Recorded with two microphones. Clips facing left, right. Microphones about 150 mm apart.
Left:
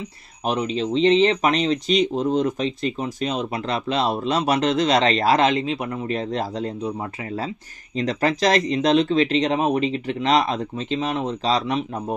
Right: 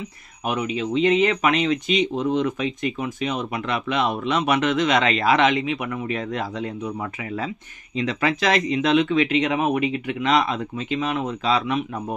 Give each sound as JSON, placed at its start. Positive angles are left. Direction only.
{"t": 0.7, "sound": "speech", "side_deg": 30}